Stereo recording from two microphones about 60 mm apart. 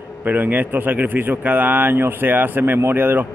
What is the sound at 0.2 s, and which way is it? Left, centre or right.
A man's voice, right.